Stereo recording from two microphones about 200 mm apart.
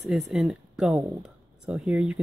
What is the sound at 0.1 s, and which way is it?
Speech, centre (ahead or behind).